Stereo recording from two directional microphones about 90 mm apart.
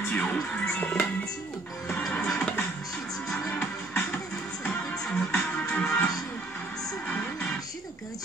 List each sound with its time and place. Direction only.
0.1 s music: 15° left (ahead or behind)
4.6 s music: 5° left (ahead or behind)